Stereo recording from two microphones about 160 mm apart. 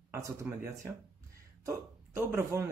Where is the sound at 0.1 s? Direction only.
20° right (ahead or behind).